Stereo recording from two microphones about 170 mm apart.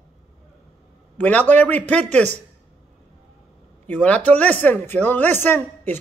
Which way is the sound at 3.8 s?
10° left (ahead or behind).